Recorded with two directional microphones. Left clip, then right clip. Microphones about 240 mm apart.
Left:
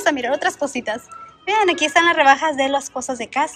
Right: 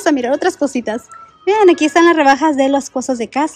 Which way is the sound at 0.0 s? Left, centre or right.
Right.